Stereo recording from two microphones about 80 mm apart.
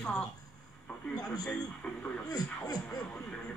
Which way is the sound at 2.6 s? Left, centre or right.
Left.